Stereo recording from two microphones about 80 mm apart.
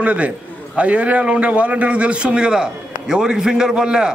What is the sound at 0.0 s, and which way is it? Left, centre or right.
A man's voice, centre.